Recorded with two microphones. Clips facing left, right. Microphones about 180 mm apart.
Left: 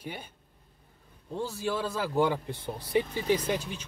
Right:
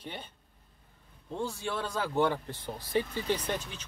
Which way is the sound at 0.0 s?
10° left (ahead or behind).